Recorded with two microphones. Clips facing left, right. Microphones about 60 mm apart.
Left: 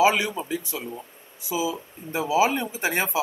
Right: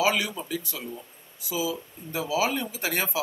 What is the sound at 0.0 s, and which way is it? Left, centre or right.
Speech, left.